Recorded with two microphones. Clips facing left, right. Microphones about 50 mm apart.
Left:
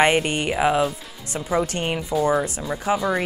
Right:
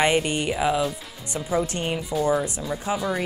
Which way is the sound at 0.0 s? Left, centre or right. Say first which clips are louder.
Left 3 dB; left.